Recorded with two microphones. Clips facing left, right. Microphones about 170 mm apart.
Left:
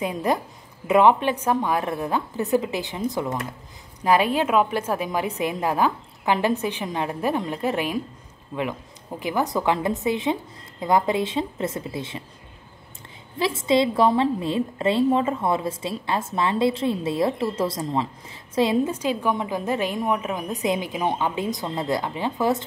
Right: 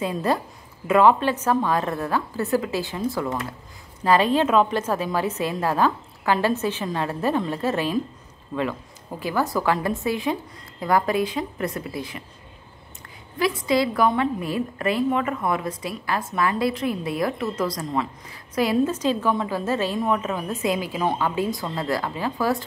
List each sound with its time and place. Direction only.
0.0 s a woman's voice: 15° left (ahead or behind)
9.2 s a woman's voice: 20° left (ahead or behind)
13.4 s a woman's voice: 25° left (ahead or behind)